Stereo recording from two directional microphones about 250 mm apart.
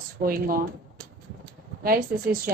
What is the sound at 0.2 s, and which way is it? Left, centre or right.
Speech, right.